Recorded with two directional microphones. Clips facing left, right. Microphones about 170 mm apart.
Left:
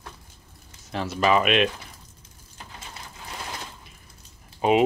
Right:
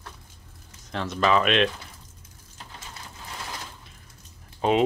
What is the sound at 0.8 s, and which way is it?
Speech, 5° left (ahead or behind).